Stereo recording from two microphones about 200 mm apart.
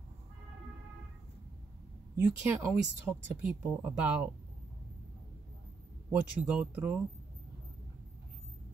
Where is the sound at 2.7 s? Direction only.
5° right (ahead or behind).